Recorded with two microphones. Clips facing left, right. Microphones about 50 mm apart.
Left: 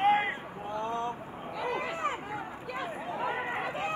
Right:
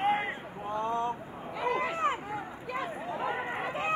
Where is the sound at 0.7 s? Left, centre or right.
Right.